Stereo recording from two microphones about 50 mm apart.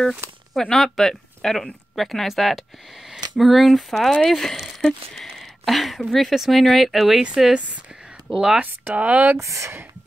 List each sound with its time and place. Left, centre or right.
0.6 s speech: centre
8.9 s speech: right
9.4 s speech: right